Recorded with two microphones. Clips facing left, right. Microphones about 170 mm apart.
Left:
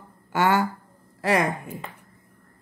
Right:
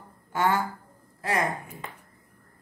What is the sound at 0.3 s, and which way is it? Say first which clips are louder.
Speech: left 4 dB; 80° left.